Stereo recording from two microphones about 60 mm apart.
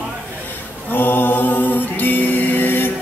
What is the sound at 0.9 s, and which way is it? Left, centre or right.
A capella, left.